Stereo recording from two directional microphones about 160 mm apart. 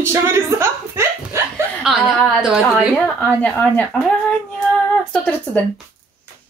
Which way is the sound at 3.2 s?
10° left (ahead or behind).